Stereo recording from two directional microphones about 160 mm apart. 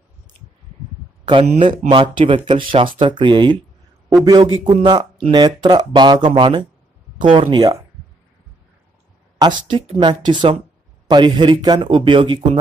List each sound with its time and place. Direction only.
1.5 s speech: 30° right (ahead or behind)
9.4 s speech: 30° right (ahead or behind)